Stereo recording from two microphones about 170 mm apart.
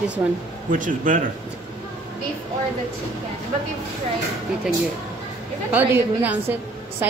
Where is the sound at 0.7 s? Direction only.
50° right (ahead or behind).